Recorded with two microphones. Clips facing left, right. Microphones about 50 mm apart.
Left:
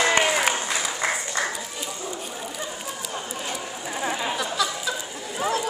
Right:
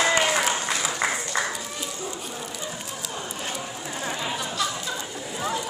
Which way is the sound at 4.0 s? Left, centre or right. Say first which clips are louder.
Left 3 dB; centre.